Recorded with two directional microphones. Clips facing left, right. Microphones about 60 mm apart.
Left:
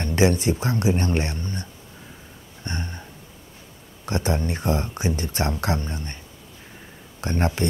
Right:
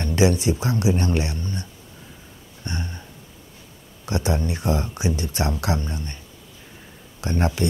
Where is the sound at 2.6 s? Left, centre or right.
Left.